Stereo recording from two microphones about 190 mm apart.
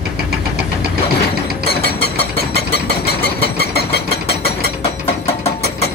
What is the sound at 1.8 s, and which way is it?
Engine, 60° left (ahead or behind).